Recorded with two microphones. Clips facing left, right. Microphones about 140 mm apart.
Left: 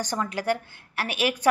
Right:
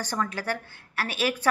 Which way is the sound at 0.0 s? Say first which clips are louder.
Left 2 dB; 15° left (ahead or behind).